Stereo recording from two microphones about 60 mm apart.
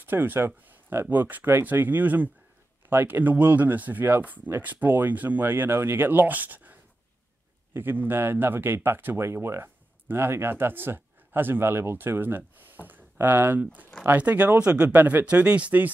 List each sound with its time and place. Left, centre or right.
0.0 s speech: right